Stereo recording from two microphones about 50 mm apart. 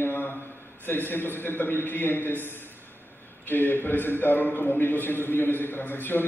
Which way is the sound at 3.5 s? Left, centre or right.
Left.